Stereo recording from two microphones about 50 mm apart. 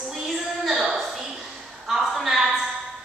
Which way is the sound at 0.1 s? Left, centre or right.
Centre.